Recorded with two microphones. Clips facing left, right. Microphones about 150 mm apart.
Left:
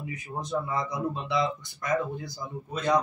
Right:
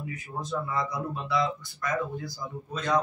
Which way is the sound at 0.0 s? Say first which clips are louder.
Left 1 dB; 20° left (ahead or behind).